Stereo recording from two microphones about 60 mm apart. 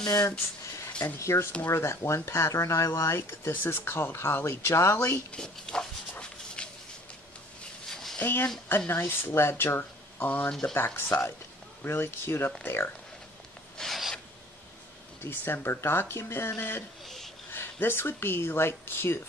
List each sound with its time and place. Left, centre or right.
0.0 s speech: left
1.2 s speech: left
5.3 s speech: centre
6.1 s a sound: centre
7.9 s a sound: centre
8.2 s speech: left
10.7 s speech: left
13.7 s filing: centre
15.2 s speech: left
17.0 s a sound: centre
17.5 s speech: left